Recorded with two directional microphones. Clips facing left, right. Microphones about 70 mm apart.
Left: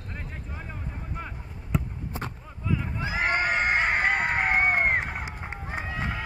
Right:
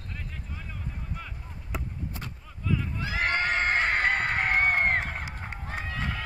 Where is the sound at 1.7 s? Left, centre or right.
Centre.